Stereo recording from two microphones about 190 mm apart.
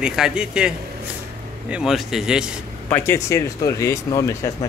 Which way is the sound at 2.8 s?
10° left (ahead or behind).